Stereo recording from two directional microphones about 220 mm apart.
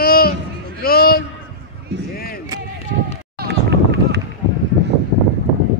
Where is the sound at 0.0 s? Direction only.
45° left (ahead or behind).